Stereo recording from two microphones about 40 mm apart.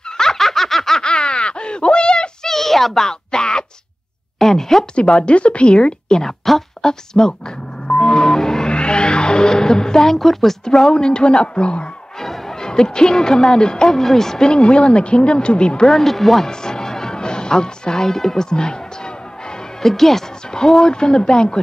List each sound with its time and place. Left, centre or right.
0.2 s snicker: centre
1.0 s a sound: left
2.4 s a sound: centre
4.4 s speech: centre
4.9 s speech: left
7.9 s music: left; by 10.6 s centre
10.6 s speech: centre
12.2 s speech: centre
14.5 s speech: left
15.9 s speech: centre
16.4 s speech: centre
19.8 s speech: centre